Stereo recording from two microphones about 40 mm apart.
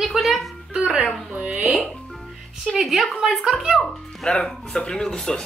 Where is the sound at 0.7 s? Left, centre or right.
Right.